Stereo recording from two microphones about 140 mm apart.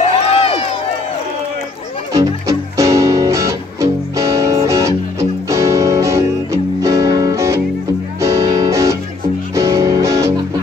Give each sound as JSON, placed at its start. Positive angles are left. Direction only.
{"t": 0.1, "sound": "run", "side_deg": 45}
{"t": 2.1, "sound": "music", "side_deg": -20}